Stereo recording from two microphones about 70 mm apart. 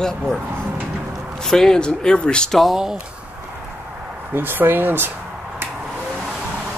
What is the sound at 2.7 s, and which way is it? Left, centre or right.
Speech, centre.